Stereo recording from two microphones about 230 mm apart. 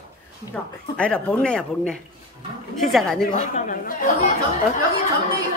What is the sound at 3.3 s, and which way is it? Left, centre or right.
Speech, left.